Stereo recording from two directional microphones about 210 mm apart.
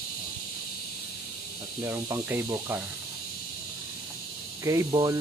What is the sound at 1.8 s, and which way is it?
Speech, 10° right (ahead or behind).